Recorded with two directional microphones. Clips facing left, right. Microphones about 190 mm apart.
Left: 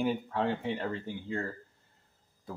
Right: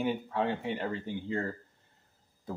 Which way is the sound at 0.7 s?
20° right (ahead or behind).